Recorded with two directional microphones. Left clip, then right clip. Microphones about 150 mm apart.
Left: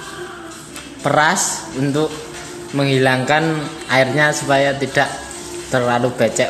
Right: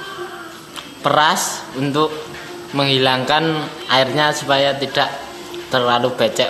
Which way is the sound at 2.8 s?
10° left (ahead or behind).